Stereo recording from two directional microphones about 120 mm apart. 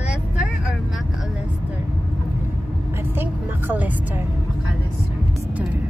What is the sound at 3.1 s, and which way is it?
Vehicle, 15° right (ahead or behind).